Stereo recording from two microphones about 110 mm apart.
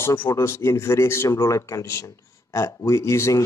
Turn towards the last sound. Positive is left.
turn(degrees=25)  # may be behind; listen again after turning